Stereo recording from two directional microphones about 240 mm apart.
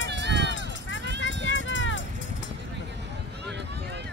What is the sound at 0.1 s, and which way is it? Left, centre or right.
Run, right.